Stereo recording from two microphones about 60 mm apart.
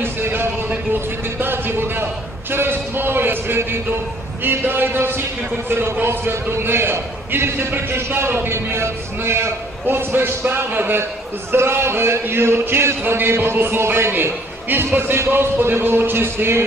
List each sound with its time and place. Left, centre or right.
0.0 s a man's voice: right